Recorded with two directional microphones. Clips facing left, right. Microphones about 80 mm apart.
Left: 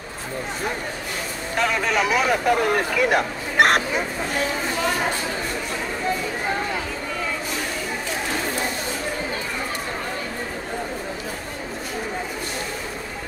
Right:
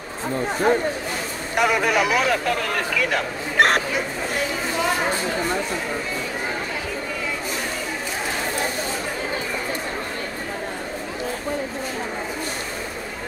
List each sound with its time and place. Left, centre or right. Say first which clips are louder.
1.6 s speech: right 2 dB; centre
2.2 s speech: left 3 dB; centre
3.5 s speech: left 1 dB; centre